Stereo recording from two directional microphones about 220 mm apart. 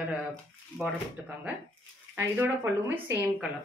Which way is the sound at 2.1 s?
10° right (ahead or behind).